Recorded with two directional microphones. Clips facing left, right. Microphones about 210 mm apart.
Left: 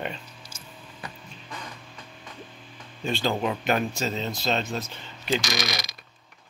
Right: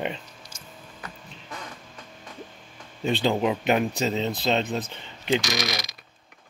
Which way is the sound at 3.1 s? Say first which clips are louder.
Right 3 dB; 20° right (ahead or behind).